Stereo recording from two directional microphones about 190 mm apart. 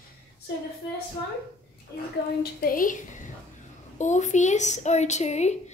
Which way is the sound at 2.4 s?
50° left (ahead or behind).